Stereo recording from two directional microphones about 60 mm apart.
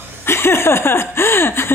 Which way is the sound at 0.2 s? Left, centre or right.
Left.